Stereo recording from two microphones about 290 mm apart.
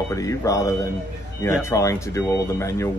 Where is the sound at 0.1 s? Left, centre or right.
Centre.